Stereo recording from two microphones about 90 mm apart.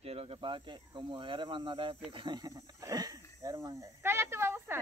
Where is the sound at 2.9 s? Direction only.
45° right (ahead or behind).